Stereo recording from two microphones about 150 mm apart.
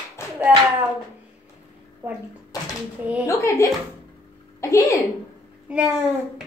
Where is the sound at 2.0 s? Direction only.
15° right (ahead or behind).